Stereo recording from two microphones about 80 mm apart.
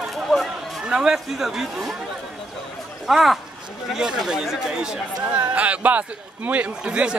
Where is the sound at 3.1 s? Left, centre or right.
Centre.